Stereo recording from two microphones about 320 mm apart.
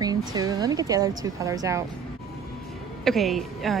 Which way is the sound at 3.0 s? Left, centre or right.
Centre.